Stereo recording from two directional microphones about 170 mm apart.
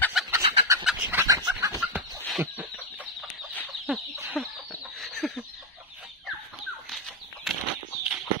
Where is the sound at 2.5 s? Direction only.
10° right (ahead or behind).